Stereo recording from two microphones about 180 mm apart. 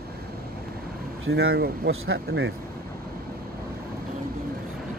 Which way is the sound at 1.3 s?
65° right (ahead or behind).